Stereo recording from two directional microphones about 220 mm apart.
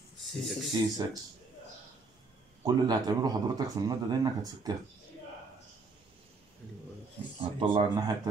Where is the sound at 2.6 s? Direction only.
15° right (ahead or behind).